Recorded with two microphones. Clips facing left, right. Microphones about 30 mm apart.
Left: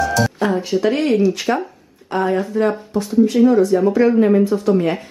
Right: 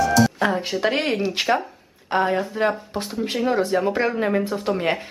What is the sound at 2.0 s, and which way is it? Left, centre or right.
Speech, right.